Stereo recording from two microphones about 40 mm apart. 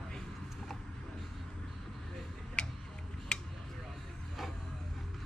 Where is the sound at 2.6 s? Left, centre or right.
Left.